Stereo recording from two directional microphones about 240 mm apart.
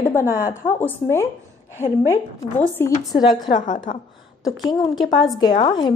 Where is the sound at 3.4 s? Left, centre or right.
Left.